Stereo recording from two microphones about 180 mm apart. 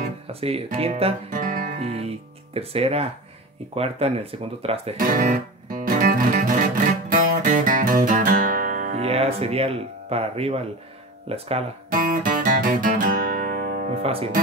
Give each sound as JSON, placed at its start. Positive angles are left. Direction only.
{"t": 0.0, "sound": "speech", "side_deg": -35}
{"t": 1.4, "sound": "guitar", "side_deg": -50}
{"t": 1.8, "sound": "speech", "side_deg": -35}
{"t": 4.9, "sound": "music", "side_deg": -50}
{"t": 9.0, "sound": "speech", "side_deg": -35}
{"t": 11.9, "sound": "music", "side_deg": -50}